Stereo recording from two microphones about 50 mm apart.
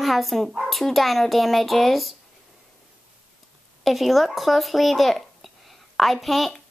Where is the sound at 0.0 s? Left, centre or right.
Centre.